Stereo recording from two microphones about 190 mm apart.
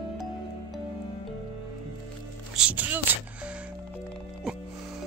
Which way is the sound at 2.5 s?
5° right (ahead or behind).